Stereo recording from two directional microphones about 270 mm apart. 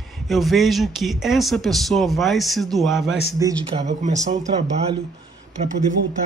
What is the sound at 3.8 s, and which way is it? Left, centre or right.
Speech, right.